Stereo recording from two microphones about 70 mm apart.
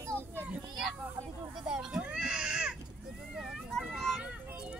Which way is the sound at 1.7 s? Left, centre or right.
Centre.